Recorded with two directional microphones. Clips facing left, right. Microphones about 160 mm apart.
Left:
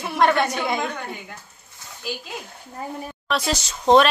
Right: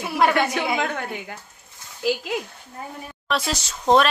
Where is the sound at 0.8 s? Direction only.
65° right (ahead or behind).